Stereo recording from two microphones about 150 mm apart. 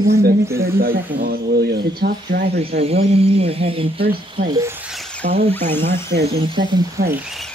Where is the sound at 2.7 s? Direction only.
45° right (ahead or behind).